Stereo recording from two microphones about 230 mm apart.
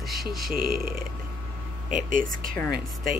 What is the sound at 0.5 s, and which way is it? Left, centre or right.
Speech, right.